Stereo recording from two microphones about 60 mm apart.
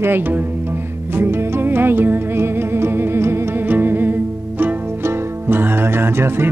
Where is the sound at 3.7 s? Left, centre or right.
Right.